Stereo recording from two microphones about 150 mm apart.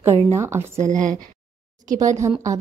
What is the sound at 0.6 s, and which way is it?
Speech, 55° right (ahead or behind).